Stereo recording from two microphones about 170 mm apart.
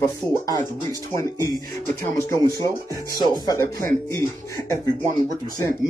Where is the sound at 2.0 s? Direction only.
15° left (ahead or behind).